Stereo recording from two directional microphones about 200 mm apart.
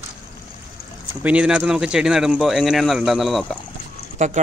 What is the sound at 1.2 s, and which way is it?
Speech, 5° right (ahead or behind).